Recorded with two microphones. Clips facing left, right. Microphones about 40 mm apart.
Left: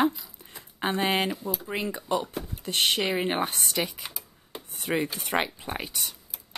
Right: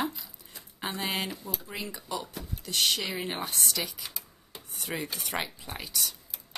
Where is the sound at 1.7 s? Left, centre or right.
Left.